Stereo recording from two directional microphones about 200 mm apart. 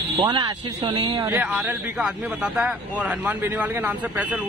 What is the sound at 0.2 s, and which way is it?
Speech, 25° right (ahead or behind).